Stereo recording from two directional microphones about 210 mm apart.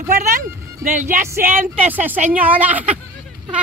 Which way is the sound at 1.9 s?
10° right (ahead or behind).